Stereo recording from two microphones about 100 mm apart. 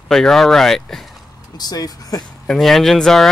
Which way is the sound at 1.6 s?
40° left (ahead or behind).